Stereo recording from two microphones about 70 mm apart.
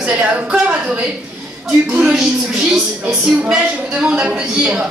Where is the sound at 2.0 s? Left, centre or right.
Centre.